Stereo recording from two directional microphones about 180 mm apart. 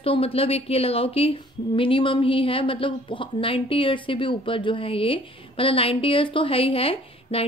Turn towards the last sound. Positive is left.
turn(degrees=30)  # may be behind; listen again after turning